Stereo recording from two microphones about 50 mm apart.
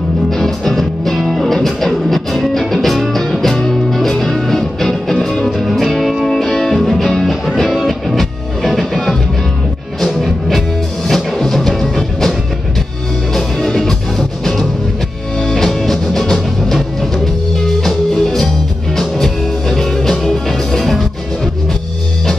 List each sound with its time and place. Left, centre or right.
0.3 s music: centre